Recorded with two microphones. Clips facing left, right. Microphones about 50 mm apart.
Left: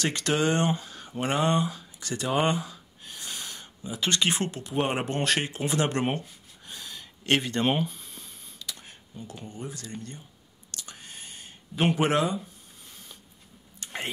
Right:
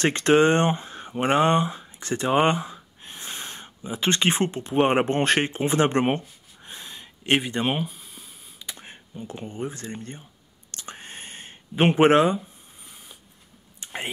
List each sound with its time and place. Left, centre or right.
0.0 s speech: right; by 8.3 s centre
8.5 s speech: right
10.7 s whispering: right
13.8 s a sound: centre